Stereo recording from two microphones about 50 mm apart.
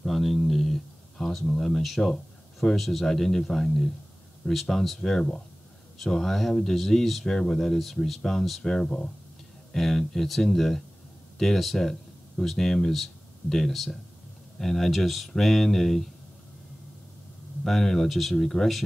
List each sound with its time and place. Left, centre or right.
0.0 s a sound: centre
2.6 s speech: centre
8.7 s speech: centre
17.6 s speech: centre